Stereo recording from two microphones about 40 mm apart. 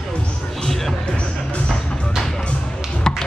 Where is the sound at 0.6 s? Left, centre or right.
Centre.